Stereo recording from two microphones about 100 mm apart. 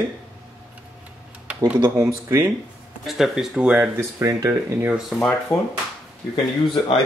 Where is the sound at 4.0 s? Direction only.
30° right (ahead or behind).